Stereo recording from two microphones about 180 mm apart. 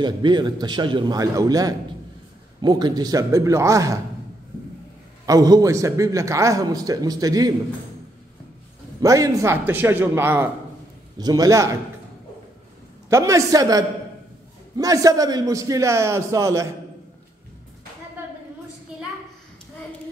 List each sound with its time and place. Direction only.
0.0 s a man's voice: 25° right (ahead or behind)
5.2 s a man's voice: 20° right (ahead or behind)
9.0 s a man's voice: 20° right (ahead or behind)
13.1 s a man's voice: 15° right (ahead or behind)